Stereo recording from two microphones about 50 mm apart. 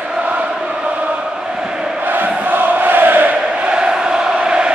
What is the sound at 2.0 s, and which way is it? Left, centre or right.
Chant, right.